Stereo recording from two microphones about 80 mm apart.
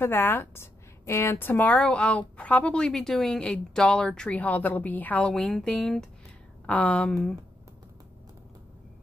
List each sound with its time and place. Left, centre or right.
0.0 s a woman's voice: left
5.2 s speech: centre
6.6 s a woman's voice: centre